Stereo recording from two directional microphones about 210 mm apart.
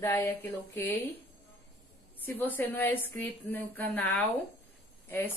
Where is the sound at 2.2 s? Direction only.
10° left (ahead or behind).